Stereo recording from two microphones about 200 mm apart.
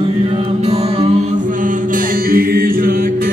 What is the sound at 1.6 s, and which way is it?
Mantra, 45° right (ahead or behind).